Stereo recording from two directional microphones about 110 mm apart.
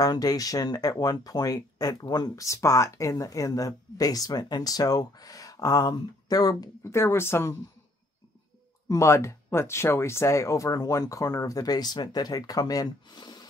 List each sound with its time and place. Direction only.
0.0 s speech: 35° left (ahead or behind)
6.8 s speech: 25° left (ahead or behind)
8.8 s speech: 25° left (ahead or behind)